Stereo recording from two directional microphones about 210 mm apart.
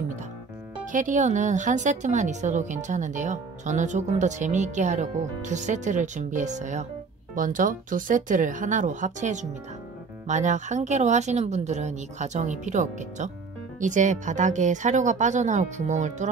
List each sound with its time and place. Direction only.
0.9 s a woman's voice: 35° right (ahead or behind)